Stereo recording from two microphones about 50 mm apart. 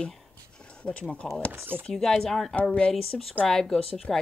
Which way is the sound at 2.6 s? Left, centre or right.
Left.